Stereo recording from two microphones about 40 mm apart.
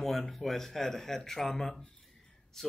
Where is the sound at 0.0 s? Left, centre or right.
Centre.